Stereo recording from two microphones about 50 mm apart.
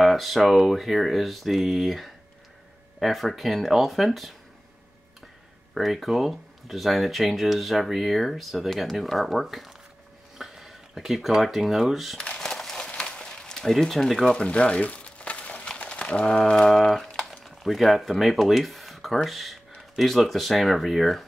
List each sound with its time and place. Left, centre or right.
0.0 s speech: centre
5.8 s speech: centre
12.4 s a sound: centre
13.7 s speech: centre
14.2 s crumpling: centre
16.7 s a sound: centre
17.4 s speech: centre